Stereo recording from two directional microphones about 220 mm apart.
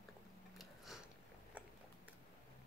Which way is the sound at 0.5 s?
Centre (ahead or behind).